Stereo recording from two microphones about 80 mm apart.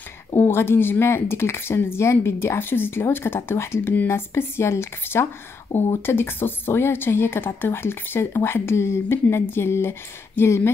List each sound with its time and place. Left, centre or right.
0.4 s speech: left